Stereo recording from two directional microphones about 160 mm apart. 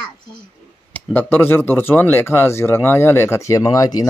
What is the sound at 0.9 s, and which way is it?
Speech, 10° left (ahead or behind).